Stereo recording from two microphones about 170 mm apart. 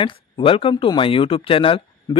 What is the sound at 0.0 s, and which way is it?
Speech, 30° left (ahead or behind).